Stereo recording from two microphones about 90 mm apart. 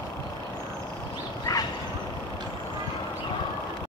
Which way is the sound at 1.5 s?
50° left (ahead or behind).